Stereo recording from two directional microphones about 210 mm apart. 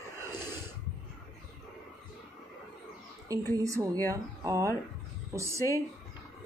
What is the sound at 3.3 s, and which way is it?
Speech, 15° right (ahead or behind).